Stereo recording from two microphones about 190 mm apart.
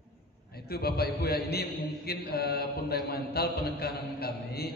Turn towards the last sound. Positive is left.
turn(degrees=55)  # may be behind; listen again after turning